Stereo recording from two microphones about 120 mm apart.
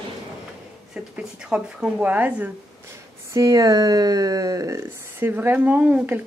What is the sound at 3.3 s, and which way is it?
Speech, 30° right (ahead or behind).